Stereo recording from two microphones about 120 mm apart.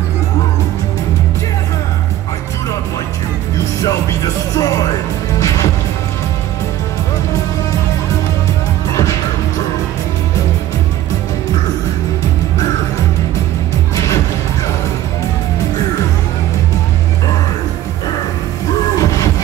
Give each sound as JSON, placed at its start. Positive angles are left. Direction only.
{"t": 3.8, "sound": "music", "side_deg": 30}
{"t": 13.9, "sound": "music", "side_deg": 30}
{"t": 18.9, "sound": "music", "side_deg": 30}